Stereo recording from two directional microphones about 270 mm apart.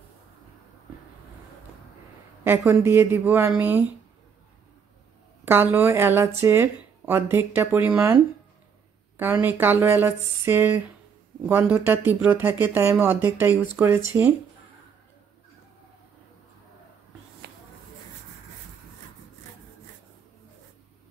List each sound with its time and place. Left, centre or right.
2.4 s speech: centre
5.4 s speech: centre
17.4 s a sound: right